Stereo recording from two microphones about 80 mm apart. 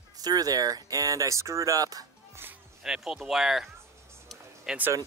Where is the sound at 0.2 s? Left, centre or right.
Right.